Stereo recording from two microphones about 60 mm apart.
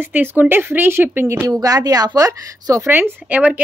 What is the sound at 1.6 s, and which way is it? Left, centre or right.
Speech, right.